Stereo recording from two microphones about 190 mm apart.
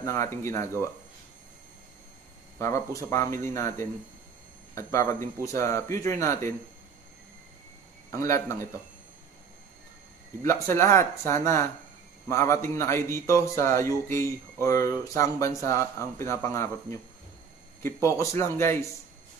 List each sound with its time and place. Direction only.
0.0 s speech: 15° left (ahead or behind)
2.6 s speech: 15° left (ahead or behind)
4.9 s speech: 15° left (ahead or behind)
8.1 s speech: 15° left (ahead or behind)
10.4 s speech: 15° left (ahead or behind)
17.8 s speech: 15° left (ahead or behind)